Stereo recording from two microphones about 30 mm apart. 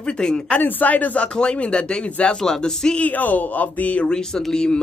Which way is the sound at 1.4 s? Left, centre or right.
Left.